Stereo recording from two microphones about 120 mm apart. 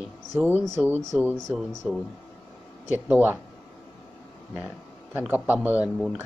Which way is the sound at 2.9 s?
15° right (ahead or behind).